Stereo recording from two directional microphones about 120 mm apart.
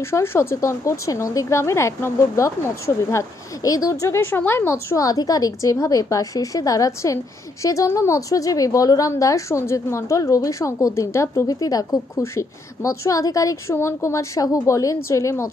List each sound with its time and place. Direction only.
0.0 s a woman's voice: 20° left (ahead or behind)